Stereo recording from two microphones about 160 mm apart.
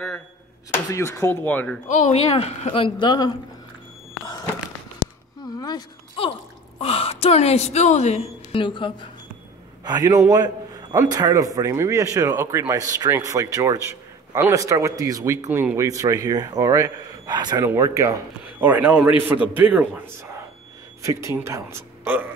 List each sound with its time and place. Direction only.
0.8 s speech: 15° left (ahead or behind)
1.9 s speech: 50° left (ahead or behind); by 3.3 s 25° left (ahead or behind)
5.5 s a sound: 25° left (ahead or behind)
6.8 s a woman's voice: 40° left (ahead or behind)
9.8 s a man's voice: 25° right (ahead or behind)
21.0 s speech: 20° right (ahead or behind)